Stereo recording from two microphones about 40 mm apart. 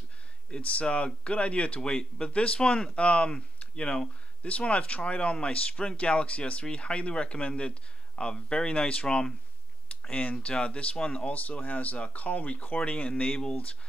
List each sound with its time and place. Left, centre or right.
0.5 s speech: left
10.4 s speech: left
11.3 s speech: left